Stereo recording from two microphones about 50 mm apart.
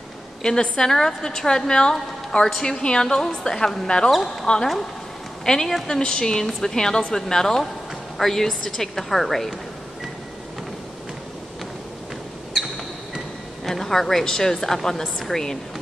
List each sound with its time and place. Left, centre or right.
0.4 s a woman's voice: centre
4.1 s a woman's voice: centre
13.7 s a woman's voice: centre